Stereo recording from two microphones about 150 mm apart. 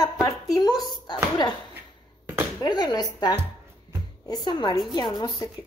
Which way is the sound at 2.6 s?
30° left (ahead or behind).